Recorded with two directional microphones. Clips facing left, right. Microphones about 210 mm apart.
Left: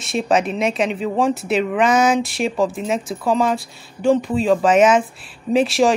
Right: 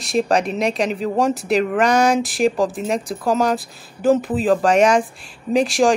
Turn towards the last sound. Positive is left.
turn(degrees=0)  # may be behind; listen again after turning